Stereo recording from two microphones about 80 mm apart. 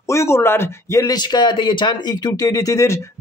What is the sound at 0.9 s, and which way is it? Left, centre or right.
Speech, left.